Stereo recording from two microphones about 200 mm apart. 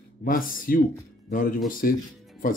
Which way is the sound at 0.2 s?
45° left (ahead or behind).